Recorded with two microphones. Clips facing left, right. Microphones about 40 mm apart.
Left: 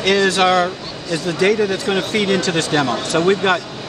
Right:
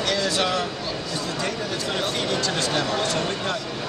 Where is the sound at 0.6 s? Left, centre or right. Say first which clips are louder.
Left 5 dB; left.